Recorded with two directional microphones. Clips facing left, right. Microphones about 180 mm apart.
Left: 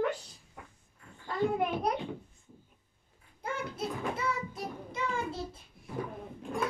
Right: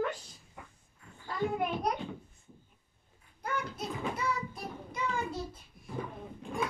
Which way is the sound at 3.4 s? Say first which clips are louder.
Left 1 dB; 25° left (ahead or behind).